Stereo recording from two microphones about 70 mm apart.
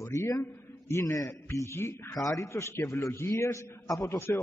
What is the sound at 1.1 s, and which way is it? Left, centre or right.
Speech, left.